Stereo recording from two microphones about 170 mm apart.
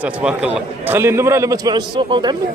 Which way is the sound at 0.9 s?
15° right (ahead or behind).